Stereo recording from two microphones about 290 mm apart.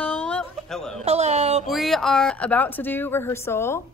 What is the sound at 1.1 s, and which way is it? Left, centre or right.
Speech, right.